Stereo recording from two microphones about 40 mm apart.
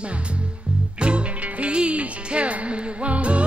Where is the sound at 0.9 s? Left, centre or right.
Right.